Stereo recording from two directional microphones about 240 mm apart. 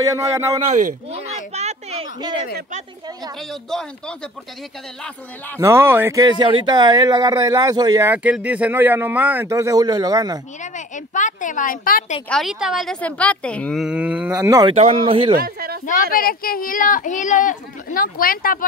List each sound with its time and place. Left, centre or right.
0.0 s speech: centre
0.7 s a sound: right
3.7 s a woman's voice: centre
5.6 s speech: centre
11.1 s speech: left
12.3 s a woman's voice: centre; by 15.3 s right
15.3 s speech: right
15.9 s speech: left